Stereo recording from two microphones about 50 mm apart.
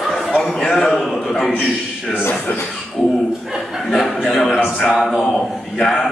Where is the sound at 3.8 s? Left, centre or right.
Centre.